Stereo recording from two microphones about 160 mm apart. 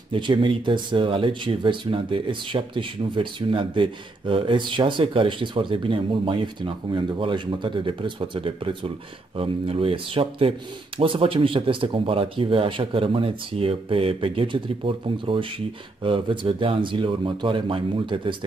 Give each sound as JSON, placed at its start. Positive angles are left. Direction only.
{"t": 0.1, "sound": "speech", "side_deg": -30}